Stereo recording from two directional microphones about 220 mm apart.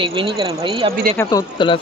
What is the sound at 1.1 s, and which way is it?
Speech, 20° left (ahead or behind).